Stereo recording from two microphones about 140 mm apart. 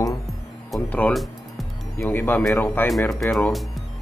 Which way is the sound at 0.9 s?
10° left (ahead or behind).